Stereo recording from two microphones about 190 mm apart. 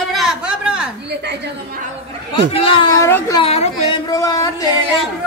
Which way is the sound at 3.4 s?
30° left (ahead or behind).